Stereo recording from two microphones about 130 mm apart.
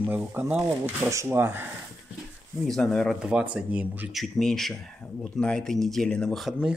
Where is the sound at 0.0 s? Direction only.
15° right (ahead or behind).